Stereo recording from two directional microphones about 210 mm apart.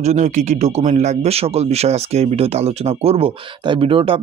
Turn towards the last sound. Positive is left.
turn(degrees=-25)  # may be behind; listen again after turning